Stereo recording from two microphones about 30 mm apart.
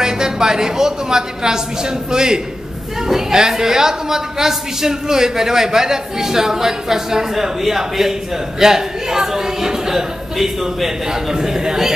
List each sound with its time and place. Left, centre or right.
0.0 s a woman's voice: right